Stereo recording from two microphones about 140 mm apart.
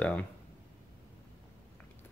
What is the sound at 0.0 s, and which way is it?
Speech, 10° left (ahead or behind).